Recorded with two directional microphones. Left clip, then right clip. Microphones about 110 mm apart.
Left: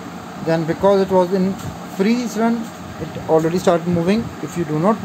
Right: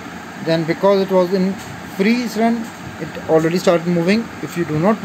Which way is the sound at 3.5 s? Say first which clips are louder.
Right 1 dB; 10° right (ahead or behind).